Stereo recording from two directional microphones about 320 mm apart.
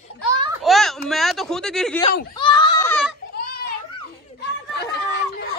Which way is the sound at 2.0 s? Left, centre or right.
Centre.